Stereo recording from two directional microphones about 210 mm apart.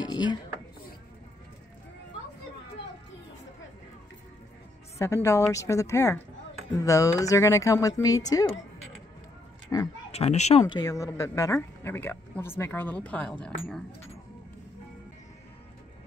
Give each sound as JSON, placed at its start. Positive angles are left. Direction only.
{"t": 0.0, "sound": "chopping", "side_deg": 20}
{"t": 4.9, "sound": "speech", "side_deg": 15}
{"t": 9.7, "sound": "speech", "side_deg": 15}
{"t": 10.1, "sound": "speech", "side_deg": 30}